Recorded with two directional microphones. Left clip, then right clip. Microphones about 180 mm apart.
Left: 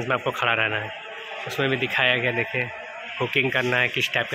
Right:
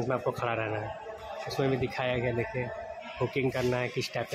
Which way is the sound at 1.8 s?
5° right (ahead or behind).